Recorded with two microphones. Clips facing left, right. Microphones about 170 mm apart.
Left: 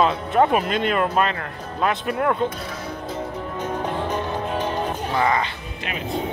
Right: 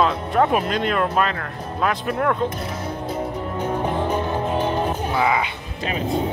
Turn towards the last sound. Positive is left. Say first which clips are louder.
# right 1 dB
turn(degrees=-5)  # may be behind; listen again after turning